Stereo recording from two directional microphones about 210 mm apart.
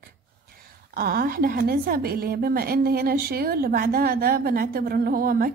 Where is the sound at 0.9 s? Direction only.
45° right (ahead or behind).